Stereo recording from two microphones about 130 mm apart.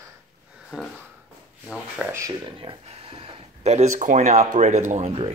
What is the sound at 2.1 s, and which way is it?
Speech, 25° right (ahead or behind).